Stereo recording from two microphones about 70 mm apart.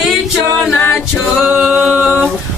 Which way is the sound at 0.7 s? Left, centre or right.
Left.